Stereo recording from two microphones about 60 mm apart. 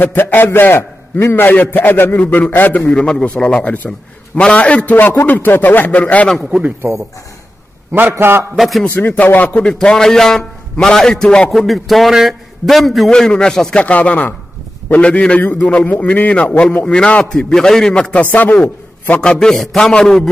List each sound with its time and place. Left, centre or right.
0.0 s a man's voice: left
3.3 s a man's voice: centre
8.1 s a man's voice: right
8.5 s a man's voice: centre
8.8 s a man's voice: left
11.5 s a man's voice: centre
13.1 s a man's voice: centre
13.8 s a man's voice: left; by 17.9 s centre
17.9 s a man's voice: left
19.5 s a man's voice: centre